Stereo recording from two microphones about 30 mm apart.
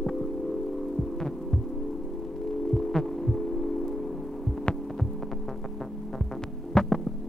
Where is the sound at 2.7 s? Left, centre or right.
Centre.